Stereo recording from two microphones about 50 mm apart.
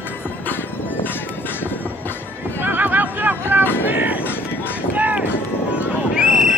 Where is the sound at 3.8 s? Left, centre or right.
Right.